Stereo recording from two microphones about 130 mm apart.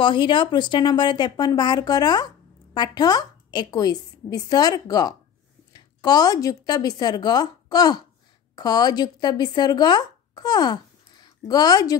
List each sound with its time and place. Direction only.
0.0 s a woman's voice: 40° left (ahead or behind)